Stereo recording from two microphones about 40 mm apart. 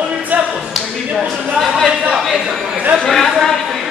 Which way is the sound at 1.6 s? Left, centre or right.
Centre.